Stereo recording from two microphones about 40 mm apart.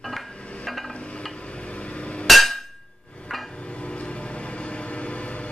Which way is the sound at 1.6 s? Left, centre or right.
Left.